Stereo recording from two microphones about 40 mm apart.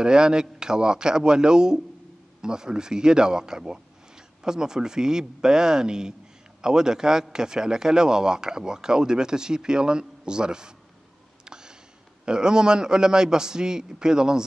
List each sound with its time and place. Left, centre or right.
0.0 s a man's voice: centre
11.4 s a sound: centre
12.3 s a man's voice: centre